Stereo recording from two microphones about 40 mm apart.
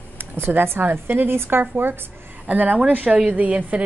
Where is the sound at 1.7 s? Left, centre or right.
Right.